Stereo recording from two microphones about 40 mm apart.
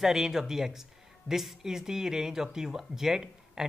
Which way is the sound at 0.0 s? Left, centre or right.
Centre.